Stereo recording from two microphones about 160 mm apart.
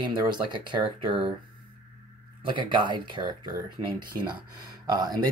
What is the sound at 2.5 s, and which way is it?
Speech, 30° right (ahead or behind).